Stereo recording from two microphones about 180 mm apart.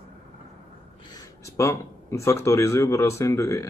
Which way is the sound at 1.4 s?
15° left (ahead or behind).